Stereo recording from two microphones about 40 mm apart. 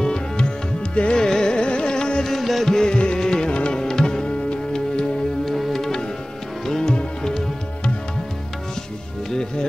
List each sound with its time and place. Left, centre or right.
0.0 s tabla: left
1.1 s carnatic music: centre
2.2 s music: centre
2.8 s music: left
5.4 s music: centre
9.3 s music: centre